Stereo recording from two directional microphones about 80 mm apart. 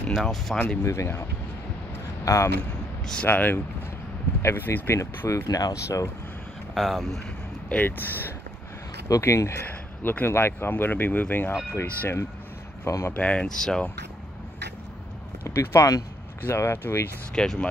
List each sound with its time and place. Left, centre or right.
0.1 s speech: centre
0.8 s speech: left
2.2 s speech: left
3.3 s speech: left
6.7 s speech: centre
7.7 s speech: left
9.1 s speech: left
13.1 s speech: centre
15.5 s speech: left
17.4 s speech: centre